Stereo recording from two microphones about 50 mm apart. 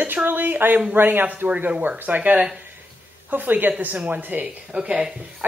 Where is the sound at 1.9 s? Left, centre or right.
Right.